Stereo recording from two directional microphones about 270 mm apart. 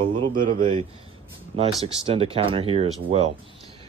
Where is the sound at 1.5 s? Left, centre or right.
Centre.